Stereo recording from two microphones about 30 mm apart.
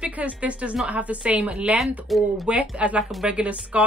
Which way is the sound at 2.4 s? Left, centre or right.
Right.